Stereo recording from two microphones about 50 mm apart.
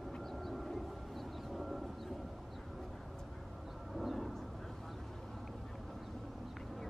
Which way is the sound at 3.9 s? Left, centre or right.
Centre.